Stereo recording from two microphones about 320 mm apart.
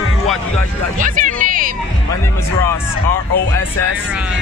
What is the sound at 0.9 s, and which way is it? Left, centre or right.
Music, right.